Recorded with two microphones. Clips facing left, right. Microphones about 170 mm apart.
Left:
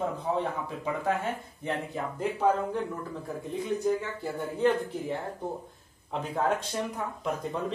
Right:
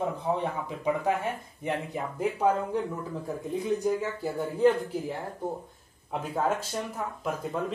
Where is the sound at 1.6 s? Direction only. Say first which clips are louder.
Right 2 dB; 15° right (ahead or behind).